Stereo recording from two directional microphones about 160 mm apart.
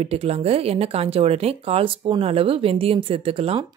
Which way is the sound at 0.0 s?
40° right (ahead or behind).